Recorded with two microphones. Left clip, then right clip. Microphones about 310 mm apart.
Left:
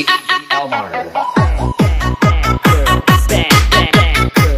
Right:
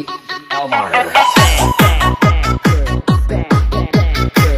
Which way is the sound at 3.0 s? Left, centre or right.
Left.